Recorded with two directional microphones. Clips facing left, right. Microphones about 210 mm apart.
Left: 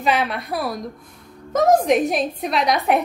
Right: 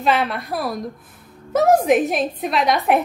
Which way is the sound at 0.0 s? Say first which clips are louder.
Right 1 dB; centre (ahead or behind).